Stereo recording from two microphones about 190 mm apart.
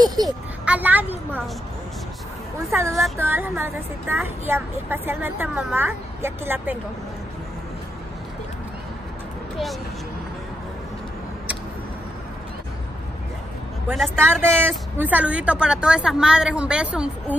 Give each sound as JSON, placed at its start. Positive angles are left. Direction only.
{"t": 0.0, "sound": "a sound", "side_deg": -20}
{"t": 0.7, "sound": "a woman's voice", "side_deg": -10}
{"t": 2.7, "sound": "a woman's voice", "side_deg": -15}
{"t": 14.1, "sound": "a woman's voice", "side_deg": -10}